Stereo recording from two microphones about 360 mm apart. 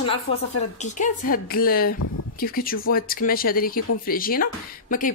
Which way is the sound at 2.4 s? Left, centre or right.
Left.